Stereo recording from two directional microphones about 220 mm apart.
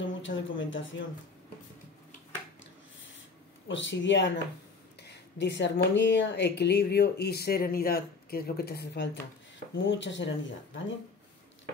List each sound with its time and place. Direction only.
0.0 s speech: 60° left (ahead or behind)
3.6 s a woman's voice: 55° left (ahead or behind)